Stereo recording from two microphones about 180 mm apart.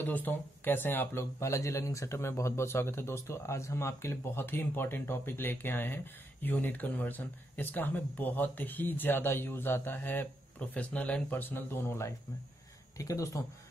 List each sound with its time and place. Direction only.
0.0 s speech: 10° left (ahead or behind)